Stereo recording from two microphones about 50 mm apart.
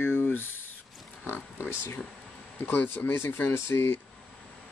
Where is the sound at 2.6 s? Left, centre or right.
Left.